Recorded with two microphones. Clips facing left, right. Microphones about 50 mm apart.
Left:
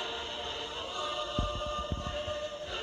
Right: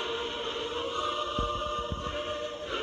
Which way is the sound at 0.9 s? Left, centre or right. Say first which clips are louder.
Right 1 dB; right.